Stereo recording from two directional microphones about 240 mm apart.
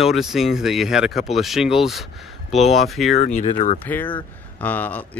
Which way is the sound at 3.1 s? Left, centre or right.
Left.